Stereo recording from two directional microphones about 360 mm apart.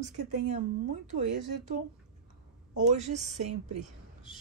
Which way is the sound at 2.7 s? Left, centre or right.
Centre.